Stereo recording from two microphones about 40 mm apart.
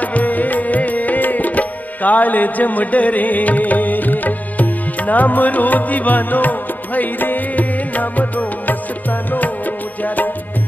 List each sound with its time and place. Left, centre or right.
0.0 s music: left
10.0 s music: left